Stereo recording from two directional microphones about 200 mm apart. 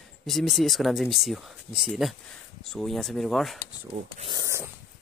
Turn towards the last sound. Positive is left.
turn(degrees=-15)  # may be behind; listen again after turning